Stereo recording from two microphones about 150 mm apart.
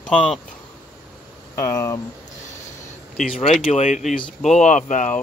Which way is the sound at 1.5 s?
20° left (ahead or behind).